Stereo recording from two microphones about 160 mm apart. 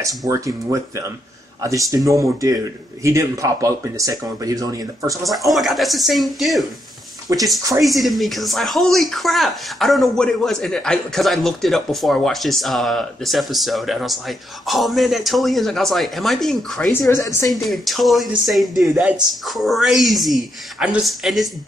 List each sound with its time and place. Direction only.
0.0 s a man's voice: 20° right (ahead or behind)
5.2 s speech: centre (ahead or behind)
7.3 s a man's voice: 20° right (ahead or behind)
7.8 s speech: centre (ahead or behind)
17.1 s a woman's voice: 20° left (ahead or behind)
17.5 s speech: centre (ahead or behind)